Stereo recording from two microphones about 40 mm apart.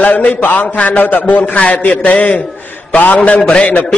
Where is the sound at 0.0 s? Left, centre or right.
Left.